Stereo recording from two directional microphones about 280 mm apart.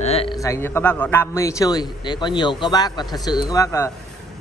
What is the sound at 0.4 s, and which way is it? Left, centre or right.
A woman's voice, centre.